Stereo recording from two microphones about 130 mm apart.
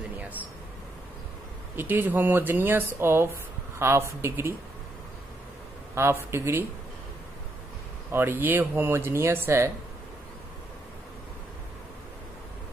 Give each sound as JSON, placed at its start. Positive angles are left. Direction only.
{"t": 0.2, "sound": "a sound", "side_deg": -10}
{"t": 1.8, "sound": "speech", "side_deg": -15}
{"t": 5.9, "sound": "speech", "side_deg": -20}
{"t": 8.1, "sound": "speech", "side_deg": -15}